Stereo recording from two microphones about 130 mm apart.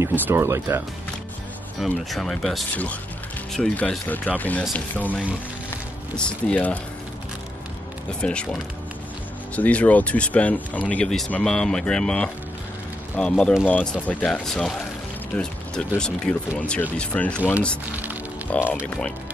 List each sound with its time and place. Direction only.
0.0 s speech: 20° right (ahead or behind)
1.8 s speech: centre (ahead or behind)
8.2 s speech: 10° left (ahead or behind)
9.6 s speech: 10° left (ahead or behind)
18.5 s speech: 10° left (ahead or behind)